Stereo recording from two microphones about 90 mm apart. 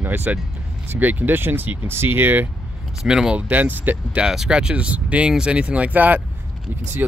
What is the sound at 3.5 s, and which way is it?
Speech, 20° right (ahead or behind).